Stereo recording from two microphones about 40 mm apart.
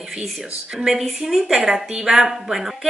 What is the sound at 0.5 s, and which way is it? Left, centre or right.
Speech, centre.